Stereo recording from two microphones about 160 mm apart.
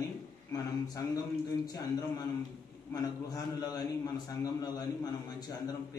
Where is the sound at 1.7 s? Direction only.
25° left (ahead or behind).